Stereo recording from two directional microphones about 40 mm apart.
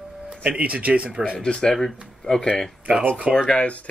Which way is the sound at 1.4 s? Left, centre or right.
Left.